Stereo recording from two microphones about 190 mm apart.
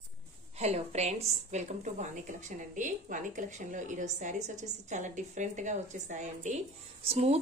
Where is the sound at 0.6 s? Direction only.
35° right (ahead or behind).